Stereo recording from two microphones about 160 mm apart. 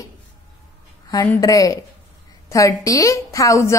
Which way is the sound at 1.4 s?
20° left (ahead or behind).